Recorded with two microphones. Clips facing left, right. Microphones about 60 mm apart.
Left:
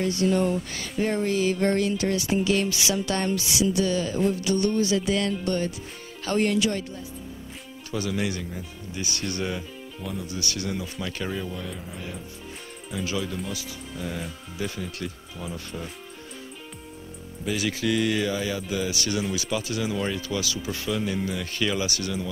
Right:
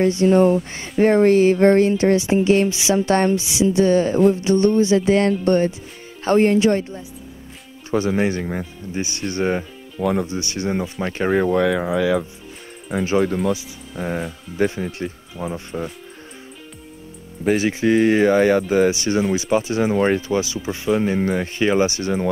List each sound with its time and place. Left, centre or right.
0.1 s speech: right
1.0 s speech: right
3.3 s speech: right
9.9 s speech: right
10.2 s speech: right
10.7 s speech: right
11.3 s speech: right
13.2 s speech: right
14.9 s speech: right
17.6 s speech: right
18.3 s speech: right
18.9 s speech: right
20.9 s speech: right
21.5 s speech: right